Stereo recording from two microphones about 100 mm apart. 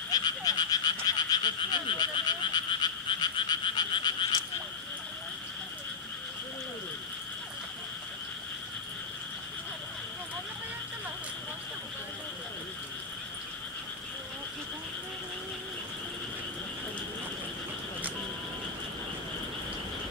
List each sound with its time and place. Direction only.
0.1 s frog: 40° left (ahead or behind)